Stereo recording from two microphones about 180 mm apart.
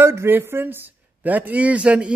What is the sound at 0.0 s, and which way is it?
Speech, 15° right (ahead or behind).